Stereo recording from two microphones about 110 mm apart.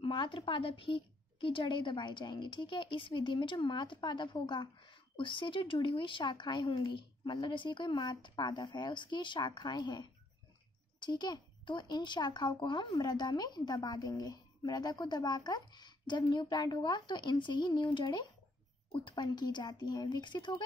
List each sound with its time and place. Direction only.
0.0 s a woman's voice: 45° left (ahead or behind)